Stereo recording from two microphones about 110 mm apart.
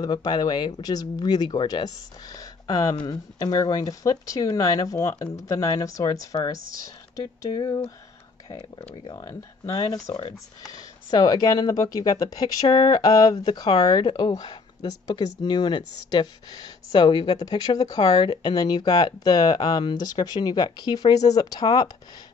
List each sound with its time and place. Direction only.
0.0 s speech: 40° left (ahead or behind)
9.0 s speech: 35° left (ahead or behind)